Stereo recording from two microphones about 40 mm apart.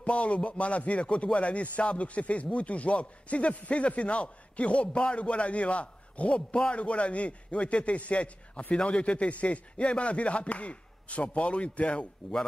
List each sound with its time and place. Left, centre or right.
0.0 s a man's voice: left